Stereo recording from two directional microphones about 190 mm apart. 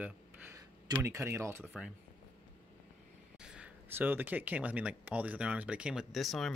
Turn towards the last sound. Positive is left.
turn(degrees=0)  # may be behind; listen again after turning